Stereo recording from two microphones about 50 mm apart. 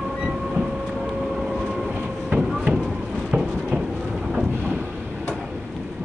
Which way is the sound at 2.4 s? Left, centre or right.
Centre.